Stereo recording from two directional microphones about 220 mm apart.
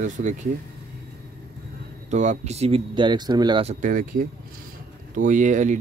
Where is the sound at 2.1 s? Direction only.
30° right (ahead or behind).